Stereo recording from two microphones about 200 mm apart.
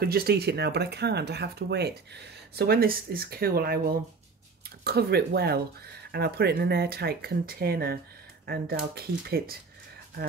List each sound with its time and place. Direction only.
0.0 s speech: 50° right (ahead or behind)